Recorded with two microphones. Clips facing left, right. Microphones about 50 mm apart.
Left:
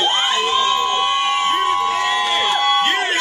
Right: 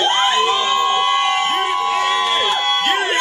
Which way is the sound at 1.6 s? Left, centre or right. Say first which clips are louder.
Even; centre.